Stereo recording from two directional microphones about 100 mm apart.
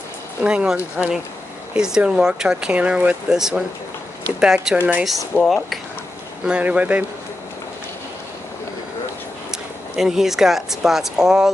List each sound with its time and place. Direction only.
0.4 s speech: 10° right (ahead or behind)
5.3 s speech: 20° left (ahead or behind)
6.4 s speech: 10° right (ahead or behind)
9.5 s speech: 5° right (ahead or behind)